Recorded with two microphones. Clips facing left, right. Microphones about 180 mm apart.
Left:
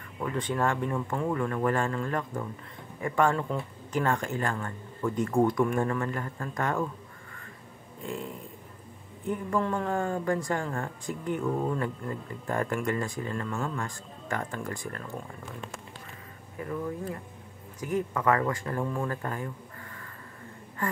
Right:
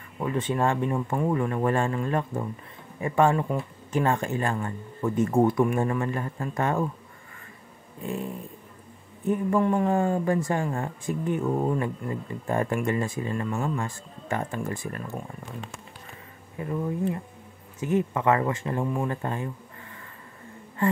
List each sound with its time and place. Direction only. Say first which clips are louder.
0.2 s speech: right 3 dB; 20° right (ahead or behind)
8.0 s speech: right 4 dB; 20° right (ahead or behind)
16.5 s speech: right 4 dB; 20° right (ahead or behind)